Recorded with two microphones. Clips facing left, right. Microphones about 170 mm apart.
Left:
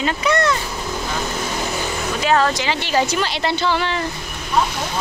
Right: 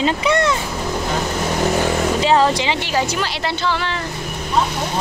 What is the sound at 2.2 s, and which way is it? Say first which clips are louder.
Speech: even; 25° right (ahead or behind).